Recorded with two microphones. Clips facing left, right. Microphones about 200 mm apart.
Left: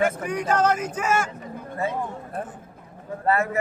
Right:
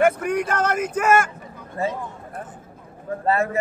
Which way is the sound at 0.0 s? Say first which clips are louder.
Right 5 dB; 55° right (ahead or behind).